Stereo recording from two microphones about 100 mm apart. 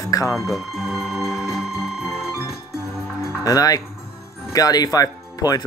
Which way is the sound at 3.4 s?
40° left (ahead or behind).